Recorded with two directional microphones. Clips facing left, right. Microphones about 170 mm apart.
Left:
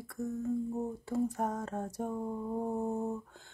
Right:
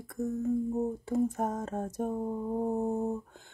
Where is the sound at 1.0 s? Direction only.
20° right (ahead or behind).